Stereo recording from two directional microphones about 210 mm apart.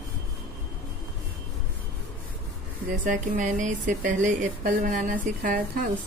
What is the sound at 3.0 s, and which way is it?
Speech, 40° right (ahead or behind).